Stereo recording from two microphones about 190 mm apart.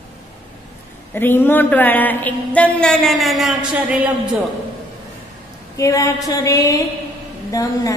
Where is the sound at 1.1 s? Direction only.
10° left (ahead or behind).